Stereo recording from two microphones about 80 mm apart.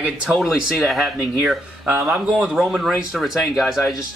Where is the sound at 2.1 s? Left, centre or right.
Centre.